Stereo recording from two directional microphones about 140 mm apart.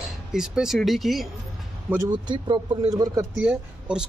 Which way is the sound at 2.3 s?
30° right (ahead or behind).